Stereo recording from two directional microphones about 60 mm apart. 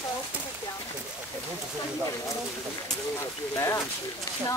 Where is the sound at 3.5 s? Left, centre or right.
Left.